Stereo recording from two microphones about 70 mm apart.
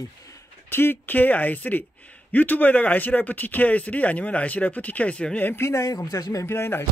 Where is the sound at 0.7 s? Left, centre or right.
Left.